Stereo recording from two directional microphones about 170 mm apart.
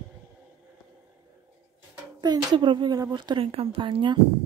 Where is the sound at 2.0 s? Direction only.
25° right (ahead or behind).